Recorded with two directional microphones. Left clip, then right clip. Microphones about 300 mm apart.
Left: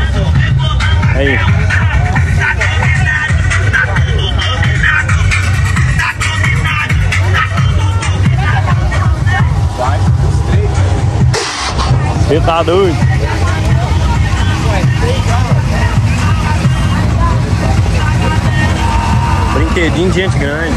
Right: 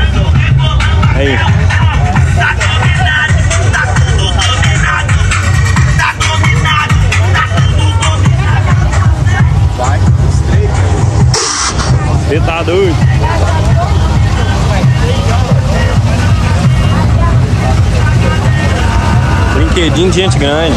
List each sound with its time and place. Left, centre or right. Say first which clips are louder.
2.1 s music: right 1 dB; right
5.8 s music: right 3 dB; centre
12.4 s speech: left 2 dB; centre
19.7 s speech: right 4 dB; centre